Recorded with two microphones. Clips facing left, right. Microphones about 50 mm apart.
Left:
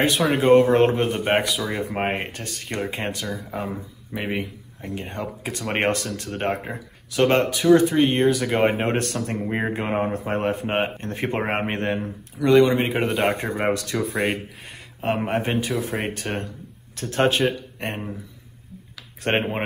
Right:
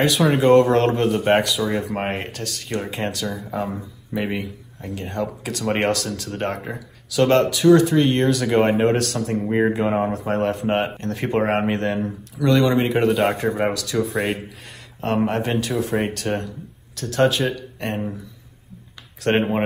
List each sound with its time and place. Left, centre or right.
0.2 s speech: centre
8.8 s speech: left; by 14.4 s centre
15.0 s speech: centre
19.3 s speech: centre